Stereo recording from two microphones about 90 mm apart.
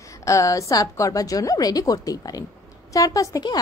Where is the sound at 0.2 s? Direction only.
35° left (ahead or behind).